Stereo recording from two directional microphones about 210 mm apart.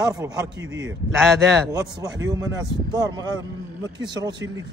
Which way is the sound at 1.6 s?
15° right (ahead or behind).